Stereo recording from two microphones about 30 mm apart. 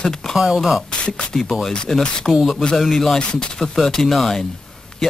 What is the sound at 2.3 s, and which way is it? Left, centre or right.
Speech, centre.